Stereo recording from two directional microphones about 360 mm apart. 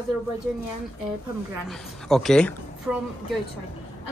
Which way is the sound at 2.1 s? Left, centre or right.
Centre.